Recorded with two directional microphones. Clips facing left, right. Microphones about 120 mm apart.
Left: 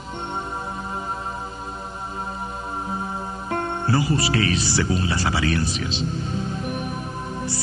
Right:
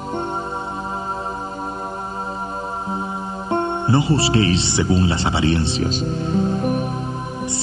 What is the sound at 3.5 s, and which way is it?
Speech, 25° right (ahead or behind).